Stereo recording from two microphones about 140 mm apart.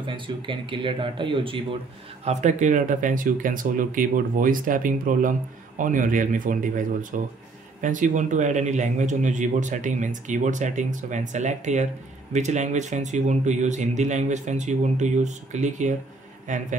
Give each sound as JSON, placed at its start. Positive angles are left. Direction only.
{"t": 0.0, "sound": "speech", "side_deg": -35}
{"t": 2.2, "sound": "a man's voice", "side_deg": -60}